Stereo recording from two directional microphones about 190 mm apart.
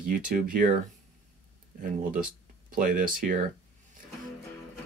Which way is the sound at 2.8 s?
45° right (ahead or behind).